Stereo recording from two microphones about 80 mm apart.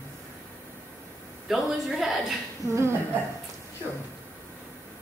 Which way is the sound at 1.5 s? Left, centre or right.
Centre.